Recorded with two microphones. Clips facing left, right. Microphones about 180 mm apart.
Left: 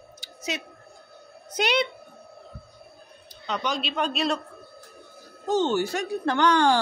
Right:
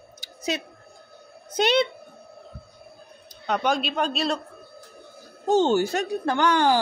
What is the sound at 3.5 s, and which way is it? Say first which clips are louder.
Speech: right 5 dB; 55° right (ahead or behind).